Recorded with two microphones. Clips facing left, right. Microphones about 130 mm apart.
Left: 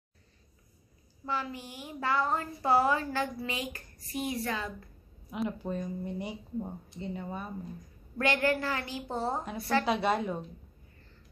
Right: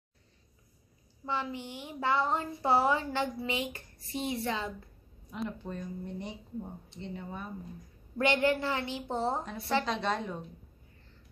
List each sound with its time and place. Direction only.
1.2 s a woman's voice: 20° right (ahead or behind)
5.3 s speech: 10° left (ahead or behind)
8.2 s a woman's voice: 20° right (ahead or behind)
9.8 s speech: 10° left (ahead or behind)